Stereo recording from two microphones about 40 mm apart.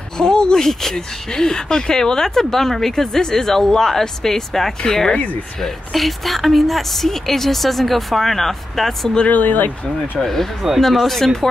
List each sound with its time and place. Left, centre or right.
0.2 s speech: centre
5.1 s speech: left
5.6 s speech: centre
9.3 s speech: left
10.1 s speech: centre